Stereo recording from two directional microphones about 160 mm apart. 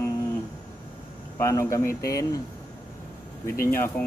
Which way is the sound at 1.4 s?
20° left (ahead or behind).